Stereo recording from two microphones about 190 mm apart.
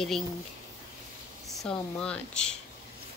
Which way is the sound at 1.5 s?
5° left (ahead or behind).